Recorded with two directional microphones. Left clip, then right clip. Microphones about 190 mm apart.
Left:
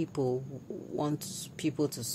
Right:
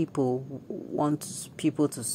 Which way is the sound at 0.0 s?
20° right (ahead or behind).